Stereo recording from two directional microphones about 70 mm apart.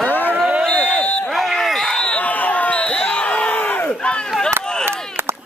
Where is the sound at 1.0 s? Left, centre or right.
Centre.